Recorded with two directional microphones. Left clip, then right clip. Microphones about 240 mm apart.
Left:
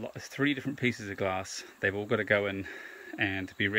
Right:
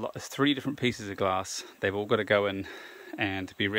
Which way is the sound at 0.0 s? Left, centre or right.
Right.